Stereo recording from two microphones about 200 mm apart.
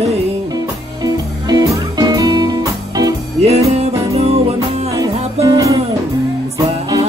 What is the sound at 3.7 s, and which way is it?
Music, 30° right (ahead or behind).